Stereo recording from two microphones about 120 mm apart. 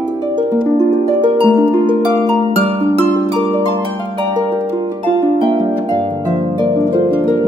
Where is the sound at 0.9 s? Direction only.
40° right (ahead or behind).